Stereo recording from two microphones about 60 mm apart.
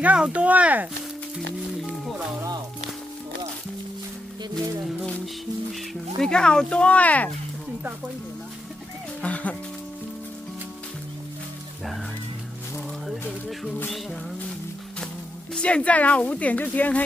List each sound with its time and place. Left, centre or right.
0.0 s speech: right
5.2 s speech: centre
6.3 s speech: centre
9.2 s music: left
15.6 s speech: left